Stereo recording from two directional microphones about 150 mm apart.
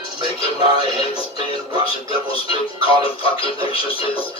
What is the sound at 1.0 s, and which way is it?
Speech, 40° left (ahead or behind).